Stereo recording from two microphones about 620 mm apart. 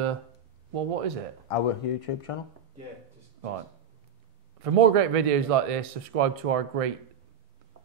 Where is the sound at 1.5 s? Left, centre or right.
Left.